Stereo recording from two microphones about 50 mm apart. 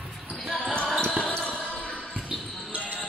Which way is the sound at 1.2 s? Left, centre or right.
Left.